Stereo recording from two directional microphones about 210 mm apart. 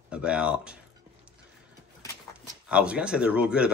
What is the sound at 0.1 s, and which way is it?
Speech, 5° right (ahead or behind).